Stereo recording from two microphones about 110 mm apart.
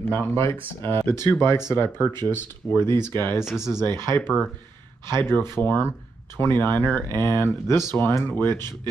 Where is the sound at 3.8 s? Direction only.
25° left (ahead or behind).